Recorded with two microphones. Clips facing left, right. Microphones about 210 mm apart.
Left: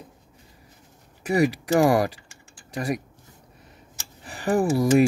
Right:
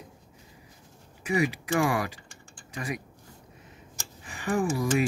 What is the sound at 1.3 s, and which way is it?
Speech, 40° left (ahead or behind).